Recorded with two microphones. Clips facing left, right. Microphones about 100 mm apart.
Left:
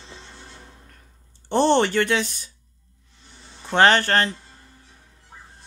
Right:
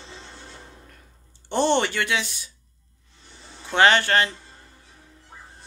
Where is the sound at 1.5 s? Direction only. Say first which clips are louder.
Left 3 dB; 40° left (ahead or behind).